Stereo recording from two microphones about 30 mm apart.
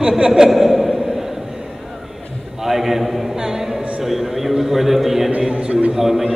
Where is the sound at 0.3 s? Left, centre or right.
Centre.